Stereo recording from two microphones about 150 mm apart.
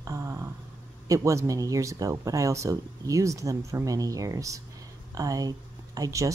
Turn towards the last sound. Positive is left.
turn(degrees=-20)  # may be behind; listen again after turning